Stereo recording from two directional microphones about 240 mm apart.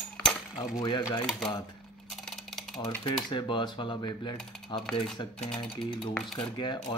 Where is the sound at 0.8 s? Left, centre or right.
Centre.